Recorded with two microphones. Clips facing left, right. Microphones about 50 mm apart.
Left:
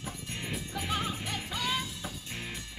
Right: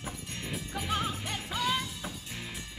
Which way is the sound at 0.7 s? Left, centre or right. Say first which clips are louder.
Right 2 dB; centre.